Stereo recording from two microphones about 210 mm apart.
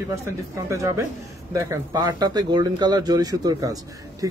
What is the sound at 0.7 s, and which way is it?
Speech, 15° right (ahead or behind).